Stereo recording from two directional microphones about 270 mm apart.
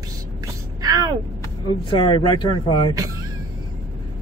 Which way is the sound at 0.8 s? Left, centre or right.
Centre.